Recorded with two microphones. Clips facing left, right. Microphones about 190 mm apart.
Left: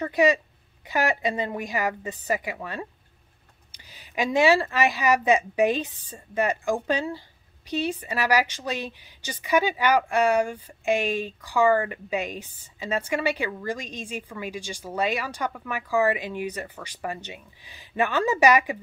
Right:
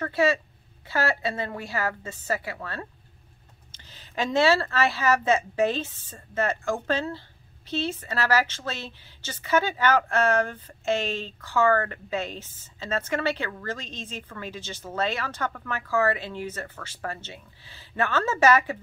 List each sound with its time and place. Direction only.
0.0 s speech: 15° left (ahead or behind)